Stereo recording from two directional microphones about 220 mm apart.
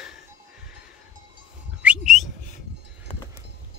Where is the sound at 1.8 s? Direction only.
5° right (ahead or behind).